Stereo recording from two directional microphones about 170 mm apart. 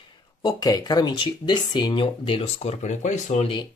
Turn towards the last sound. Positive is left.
turn(degrees=40)  # may be behind; listen again after turning